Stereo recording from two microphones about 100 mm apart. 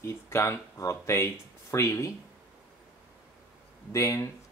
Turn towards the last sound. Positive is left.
turn(degrees=30)  # may be behind; listen again after turning